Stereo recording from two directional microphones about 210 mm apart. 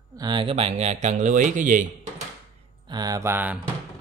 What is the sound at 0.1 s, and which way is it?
Speech, 20° right (ahead or behind).